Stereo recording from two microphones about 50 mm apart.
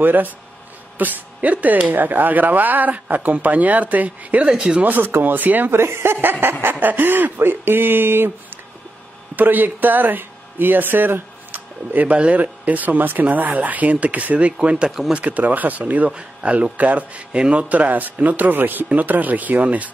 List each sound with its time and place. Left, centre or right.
0.0 s speech: right
4.5 s speech: centre
4.8 s speech: right
5.7 s speech: right
6.6 s speech: right
9.3 s speech: right
14.9 s speech: centre
15.1 s speech: right